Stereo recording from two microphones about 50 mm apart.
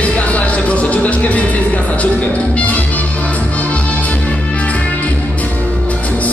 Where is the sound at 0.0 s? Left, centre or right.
Left.